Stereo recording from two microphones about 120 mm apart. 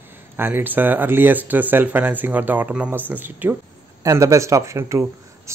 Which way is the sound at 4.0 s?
25° right (ahead or behind).